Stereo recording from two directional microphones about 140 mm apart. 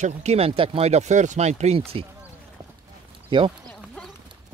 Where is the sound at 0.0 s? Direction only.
55° right (ahead or behind).